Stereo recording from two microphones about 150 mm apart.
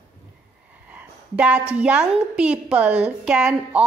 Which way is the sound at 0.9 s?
10° right (ahead or behind).